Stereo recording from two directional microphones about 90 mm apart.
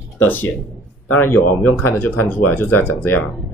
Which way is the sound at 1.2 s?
20° left (ahead or behind).